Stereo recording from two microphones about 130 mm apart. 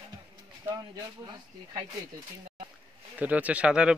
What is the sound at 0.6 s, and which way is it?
Speech, 25° right (ahead or behind).